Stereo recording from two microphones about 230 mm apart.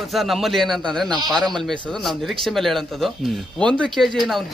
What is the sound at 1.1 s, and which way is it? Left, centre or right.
Speech, centre.